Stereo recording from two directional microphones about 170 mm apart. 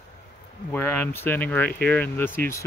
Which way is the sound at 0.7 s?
15° left (ahead or behind).